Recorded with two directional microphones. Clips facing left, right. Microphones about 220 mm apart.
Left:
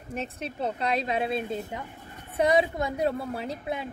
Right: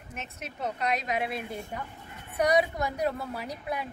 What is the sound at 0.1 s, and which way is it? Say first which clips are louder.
A woman's voice: left 8 dB; 30° left (ahead or behind).